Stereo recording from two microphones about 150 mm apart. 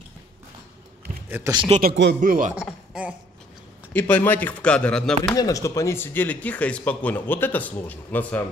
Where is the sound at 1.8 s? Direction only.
70° right (ahead or behind).